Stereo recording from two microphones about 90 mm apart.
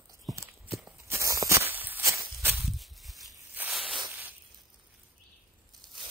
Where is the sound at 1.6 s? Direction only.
20° right (ahead or behind).